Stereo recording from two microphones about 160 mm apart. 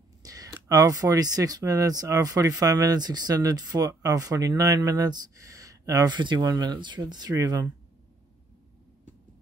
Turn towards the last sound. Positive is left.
turn(degrees=-25)  # may be behind; listen again after turning